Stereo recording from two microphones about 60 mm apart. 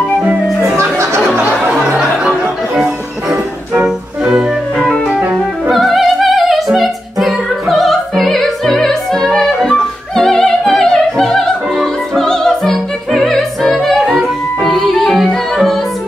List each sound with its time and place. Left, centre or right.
0.6 s music: right
2.7 s music: centre
5.7 s opera: centre
14.6 s music: centre